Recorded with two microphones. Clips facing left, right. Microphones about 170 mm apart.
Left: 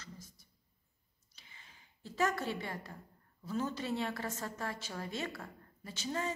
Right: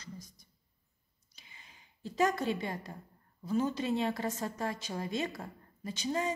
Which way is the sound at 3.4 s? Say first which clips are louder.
Right 5 dB; 15° right (ahead or behind).